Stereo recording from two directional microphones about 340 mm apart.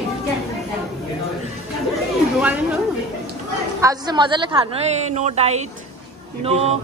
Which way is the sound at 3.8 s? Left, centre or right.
Centre.